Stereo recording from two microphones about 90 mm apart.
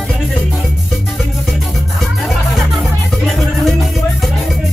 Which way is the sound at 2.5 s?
Centre (ahead or behind).